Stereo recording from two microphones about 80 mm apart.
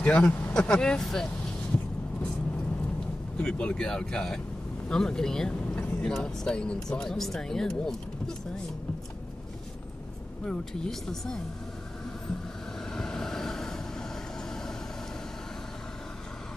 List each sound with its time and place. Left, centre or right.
0.0 s speech: centre
3.3 s speech: centre
10.4 s speech: centre
12.9 s vehicle: centre